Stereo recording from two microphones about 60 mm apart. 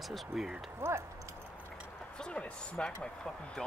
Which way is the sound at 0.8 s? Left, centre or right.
Right.